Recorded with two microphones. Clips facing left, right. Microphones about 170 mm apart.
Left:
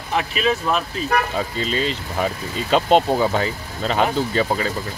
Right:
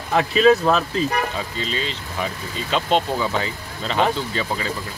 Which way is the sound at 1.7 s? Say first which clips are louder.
Left 4 dB; 45° left (ahead or behind).